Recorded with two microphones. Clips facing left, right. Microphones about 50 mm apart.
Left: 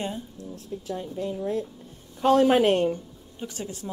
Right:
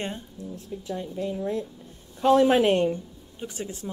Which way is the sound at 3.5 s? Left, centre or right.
Right.